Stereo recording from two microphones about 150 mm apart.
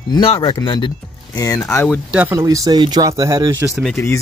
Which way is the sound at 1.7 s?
10° left (ahead or behind).